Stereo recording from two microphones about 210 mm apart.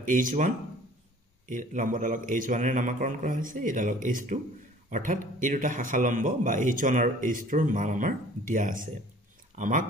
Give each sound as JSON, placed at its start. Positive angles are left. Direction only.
{"t": 0.0, "sound": "a man's voice", "side_deg": -40}
{"t": 1.5, "sound": "a man's voice", "side_deg": -40}